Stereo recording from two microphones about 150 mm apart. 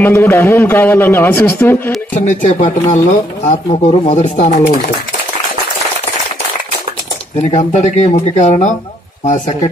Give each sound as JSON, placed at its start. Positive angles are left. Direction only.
{"t": 0.0, "sound": "a man's voice", "side_deg": 15}
{"t": 2.2, "sound": "speech", "side_deg": 55}
{"t": 7.5, "sound": "speech", "side_deg": 50}